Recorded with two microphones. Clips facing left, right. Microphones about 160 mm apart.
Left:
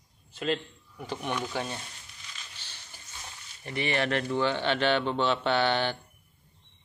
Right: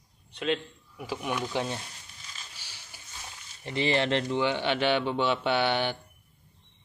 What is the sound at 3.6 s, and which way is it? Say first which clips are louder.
A man's voice: right 3 dB; 25° right (ahead or behind).